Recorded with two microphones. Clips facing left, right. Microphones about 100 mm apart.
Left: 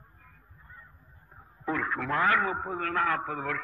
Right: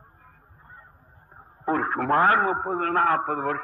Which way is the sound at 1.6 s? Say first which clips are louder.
Right 6 dB; 40° right (ahead or behind).